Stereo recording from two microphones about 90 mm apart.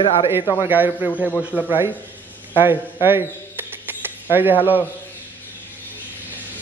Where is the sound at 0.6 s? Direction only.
20° right (ahead or behind).